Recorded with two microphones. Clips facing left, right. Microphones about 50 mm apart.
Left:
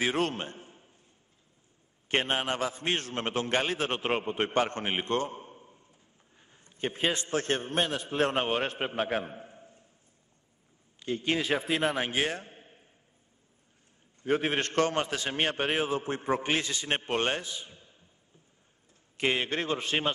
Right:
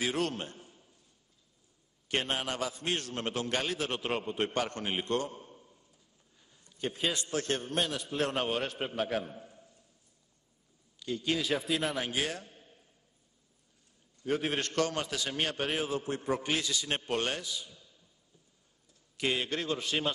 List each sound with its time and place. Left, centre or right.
0.0 s a man's voice: left
2.0 s a man's voice: left
11.0 s a man's voice: left
14.2 s a man's voice: left
19.1 s a man's voice: left